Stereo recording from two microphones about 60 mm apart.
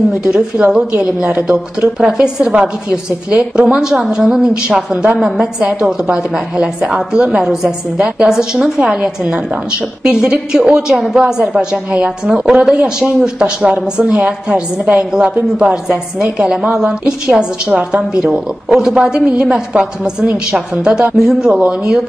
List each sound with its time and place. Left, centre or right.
0.1 s a woman's voice: centre
2.0 s a woman's voice: centre
13.2 s a woman's voice: centre
15.0 s a woman's voice: centre